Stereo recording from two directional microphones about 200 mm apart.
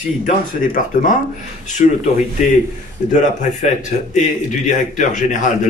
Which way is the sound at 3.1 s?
40° left (ahead or behind).